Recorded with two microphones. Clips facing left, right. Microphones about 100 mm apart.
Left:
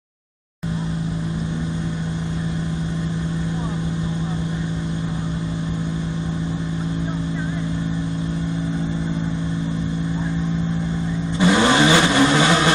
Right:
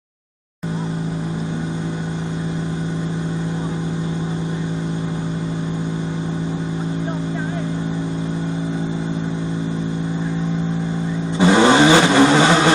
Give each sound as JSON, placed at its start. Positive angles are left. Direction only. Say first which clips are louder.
{"t": 11.3, "sound": "vehicle", "louder": "right 4 dB", "side_deg": -30}